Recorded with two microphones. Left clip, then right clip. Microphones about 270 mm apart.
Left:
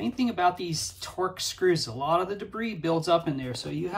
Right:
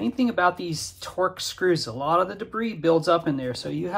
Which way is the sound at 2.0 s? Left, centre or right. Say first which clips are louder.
Right 4 dB; centre.